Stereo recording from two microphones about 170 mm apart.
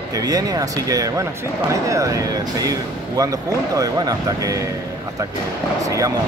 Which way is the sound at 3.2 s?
20° right (ahead or behind).